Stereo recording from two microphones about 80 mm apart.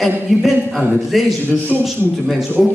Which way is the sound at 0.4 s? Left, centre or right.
Centre.